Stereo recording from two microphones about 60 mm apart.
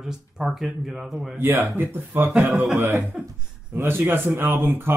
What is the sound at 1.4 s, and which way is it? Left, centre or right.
Speech, right.